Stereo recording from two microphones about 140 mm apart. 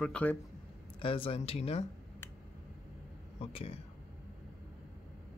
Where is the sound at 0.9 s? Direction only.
40° left (ahead or behind).